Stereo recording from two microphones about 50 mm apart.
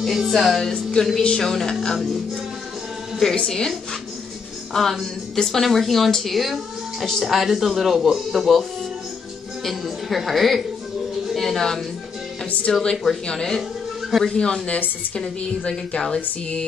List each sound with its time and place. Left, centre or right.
0.0 s a woman's voice: centre
3.3 s speech: centre
4.7 s a woman's voice: centre
9.7 s a woman's voice: centre
11.2 s a sound: centre
12.9 s a woman's voice: centre
15.9 s speech: centre